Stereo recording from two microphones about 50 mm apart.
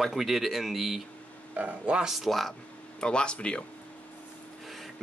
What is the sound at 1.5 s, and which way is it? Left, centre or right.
Speech, right.